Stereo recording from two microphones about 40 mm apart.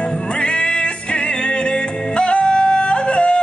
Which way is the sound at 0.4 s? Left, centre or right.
Left.